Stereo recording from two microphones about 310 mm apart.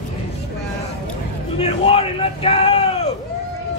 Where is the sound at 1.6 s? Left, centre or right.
Centre.